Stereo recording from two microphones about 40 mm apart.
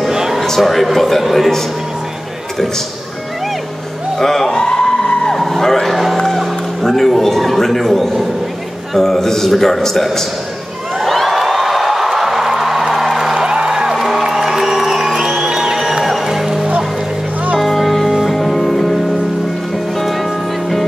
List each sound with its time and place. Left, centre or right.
0.1 s a sound: centre
0.6 s speech: centre
4.2 s music: centre
5.4 s vehicle: centre
6.1 s music: centre
8.9 s a man's voice: centre
11.1 s music: centre
13.5 s music: centre
13.9 s music: centre
17.6 s music: centre
20.0 s music: centre